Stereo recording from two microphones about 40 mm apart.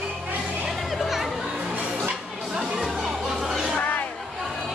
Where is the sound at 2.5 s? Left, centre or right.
Centre.